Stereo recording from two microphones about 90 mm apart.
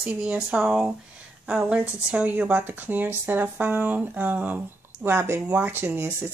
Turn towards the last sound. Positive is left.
turn(degrees=-25)  # may be behind; listen again after turning